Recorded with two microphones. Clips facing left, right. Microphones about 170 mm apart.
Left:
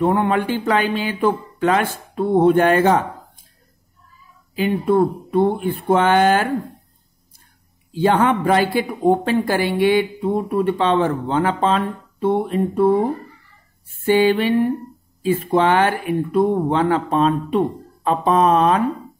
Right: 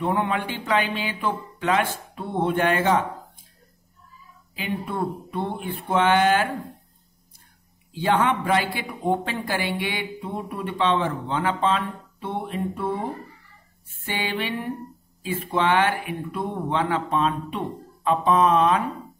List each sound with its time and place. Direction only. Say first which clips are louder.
0.0 s speech: left 7 dB; 45° left (ahead or behind)
4.6 s speech: left 11 dB; 45° left (ahead or behind)
7.9 s speech: left 5 dB; 40° left (ahead or behind)
14.0 s speech: left 13 dB; 45° left (ahead or behind)